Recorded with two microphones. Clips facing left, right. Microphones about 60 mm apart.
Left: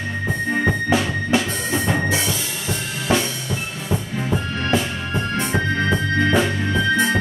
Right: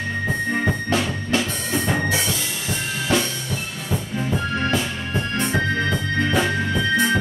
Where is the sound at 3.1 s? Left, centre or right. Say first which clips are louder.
Left 1 dB; centre.